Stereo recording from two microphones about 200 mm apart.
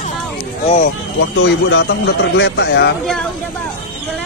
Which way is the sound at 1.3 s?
70° left (ahead or behind).